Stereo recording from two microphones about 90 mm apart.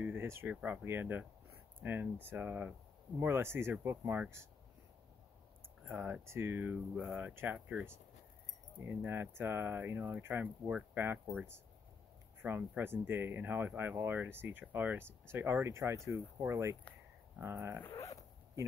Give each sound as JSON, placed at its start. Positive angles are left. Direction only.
{"t": 0.0, "sound": "a sound", "side_deg": -25}
{"t": 0.8, "sound": "speech", "side_deg": -25}
{"t": 5.9, "sound": "speech", "side_deg": -20}
{"t": 8.7, "sound": "speech", "side_deg": -25}
{"t": 12.4, "sound": "speech", "side_deg": -20}
{"t": 17.9, "sound": "zipper", "side_deg": 35}